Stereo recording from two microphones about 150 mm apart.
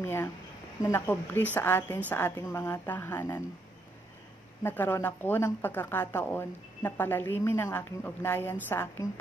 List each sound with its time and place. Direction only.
0.0 s speech: 15° left (ahead or behind)
4.6 s speech: 15° left (ahead or behind)